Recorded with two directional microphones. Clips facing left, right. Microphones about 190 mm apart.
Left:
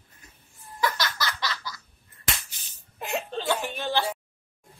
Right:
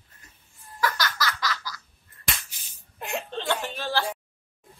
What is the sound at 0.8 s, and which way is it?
Laughter, 25° left (ahead or behind).